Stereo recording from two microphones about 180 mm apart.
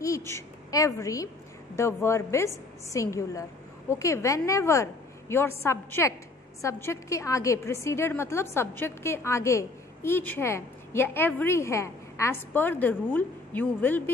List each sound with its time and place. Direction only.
0.0 s a woman's voice: 15° left (ahead or behind)